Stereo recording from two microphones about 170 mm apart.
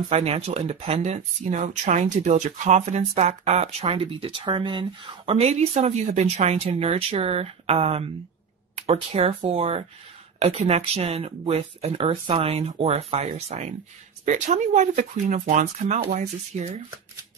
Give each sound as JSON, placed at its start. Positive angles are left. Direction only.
{"t": 0.1, "sound": "speech", "side_deg": -40}